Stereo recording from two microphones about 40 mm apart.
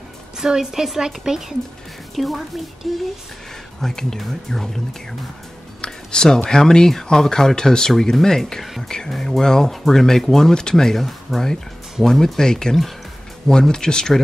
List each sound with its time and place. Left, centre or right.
0.4 s a woman's voice: centre
2.1 s a woman's voice: centre
3.8 s speech: centre
5.8 s speech: centre
11.1 s speech: centre